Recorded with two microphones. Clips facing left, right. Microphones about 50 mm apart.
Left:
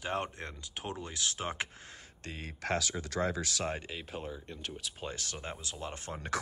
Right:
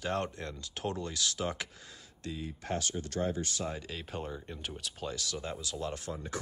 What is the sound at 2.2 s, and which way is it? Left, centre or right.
Speech, left.